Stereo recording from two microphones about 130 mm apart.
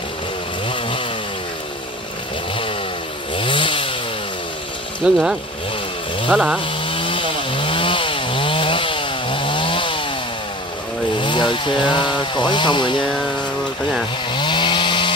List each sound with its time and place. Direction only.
0.7 s chainsaw: 40° left (ahead or behind)
3.3 s chainsaw: 40° left (ahead or behind)
5.0 s chainsaw: 5° right (ahead or behind)
6.6 s chainsaw: 40° left (ahead or behind)
11.1 s speech: 40° left (ahead or behind)
14.3 s chainsaw: 35° left (ahead or behind)